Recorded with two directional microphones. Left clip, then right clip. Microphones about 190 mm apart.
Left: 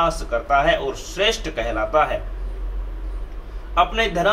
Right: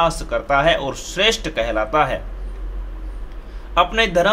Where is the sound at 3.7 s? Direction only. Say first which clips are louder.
Right 3 dB; 45° right (ahead or behind).